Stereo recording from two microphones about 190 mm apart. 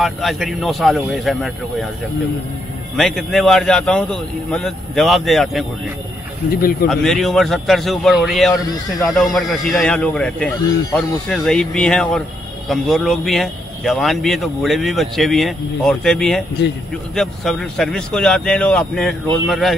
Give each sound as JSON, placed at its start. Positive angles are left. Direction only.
{"t": 0.0, "sound": "speech", "side_deg": 0}
{"t": 3.0, "sound": "speech", "side_deg": 0}
{"t": 6.5, "sound": "speech", "side_deg": 55}
{"t": 6.9, "sound": "speech", "side_deg": 0}